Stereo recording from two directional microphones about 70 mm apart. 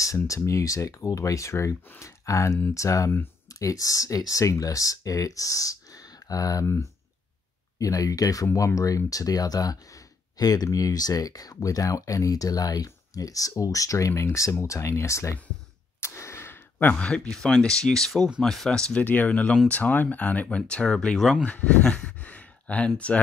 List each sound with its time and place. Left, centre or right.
0.3 s speech: left
7.8 s speech: left
16.0 s sigh: left
17.0 s speech: centre
19.0 s speech: left